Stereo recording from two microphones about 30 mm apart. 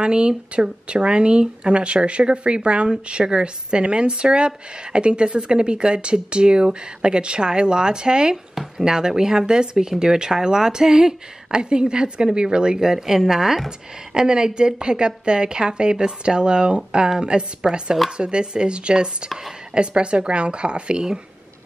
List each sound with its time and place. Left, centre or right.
0.0 s speech: right; by 13.6 s centre
13.7 s speech: right